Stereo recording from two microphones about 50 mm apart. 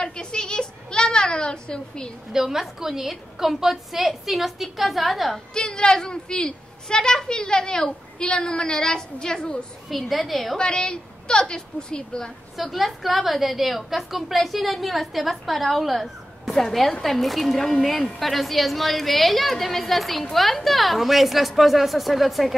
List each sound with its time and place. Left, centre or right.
0.0 s a sound: centre
2.3 s a woman's voice: centre
5.5 s a child's voice: centre
9.8 s a woman's voice: centre
10.6 s a child's voice: centre
12.5 s a woman's voice: centre